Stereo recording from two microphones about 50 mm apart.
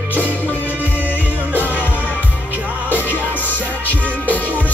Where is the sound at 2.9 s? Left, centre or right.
Left.